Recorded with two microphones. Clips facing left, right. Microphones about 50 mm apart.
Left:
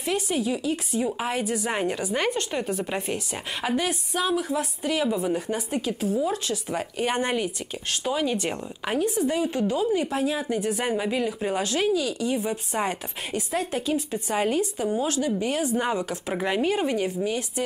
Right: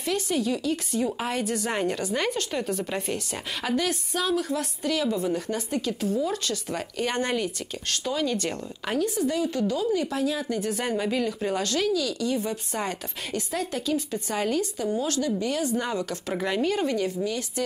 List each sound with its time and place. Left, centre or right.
0.0 s a woman's voice: centre